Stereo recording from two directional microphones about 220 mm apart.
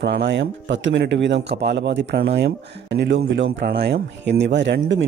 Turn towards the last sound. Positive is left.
turn(degrees=-55)  # may be behind; listen again after turning